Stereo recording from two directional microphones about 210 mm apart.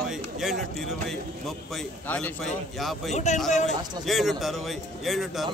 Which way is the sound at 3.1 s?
35° left (ahead or behind).